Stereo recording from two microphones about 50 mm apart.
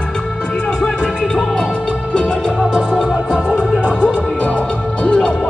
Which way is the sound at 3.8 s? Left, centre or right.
Centre.